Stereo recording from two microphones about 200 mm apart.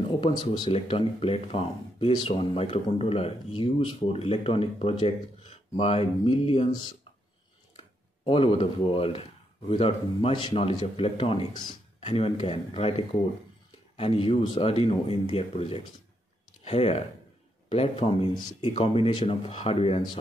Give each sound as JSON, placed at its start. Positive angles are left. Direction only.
{"t": 0.2, "sound": "speech", "side_deg": 25}